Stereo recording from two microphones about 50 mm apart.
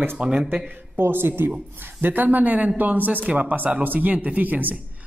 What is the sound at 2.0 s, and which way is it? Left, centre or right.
A man's voice, right.